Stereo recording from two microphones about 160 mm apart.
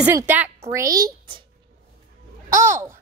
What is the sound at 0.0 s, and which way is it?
A woman's voice, 10° right (ahead or behind).